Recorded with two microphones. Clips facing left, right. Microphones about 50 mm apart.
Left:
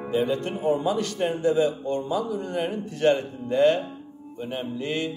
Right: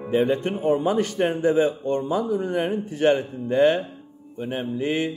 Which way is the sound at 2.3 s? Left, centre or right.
Right.